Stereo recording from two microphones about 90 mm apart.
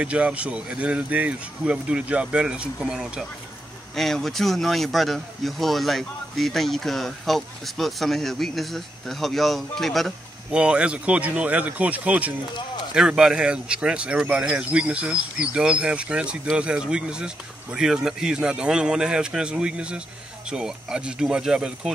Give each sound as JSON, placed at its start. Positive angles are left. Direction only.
{"t": 0.0, "sound": "speech", "side_deg": -15}
{"t": 10.5, "sound": "speech", "side_deg": -10}